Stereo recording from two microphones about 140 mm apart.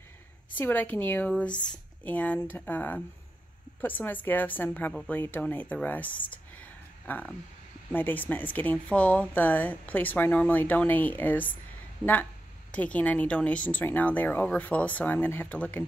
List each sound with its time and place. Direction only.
0.6 s speech: 10° left (ahead or behind)
6.3 s a sound: 10° left (ahead or behind)
7.9 s speech: 15° left (ahead or behind)
12.7 s speech: 10° left (ahead or behind)